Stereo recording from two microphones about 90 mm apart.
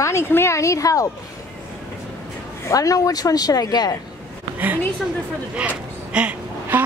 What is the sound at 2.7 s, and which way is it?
Speech, 40° left (ahead or behind).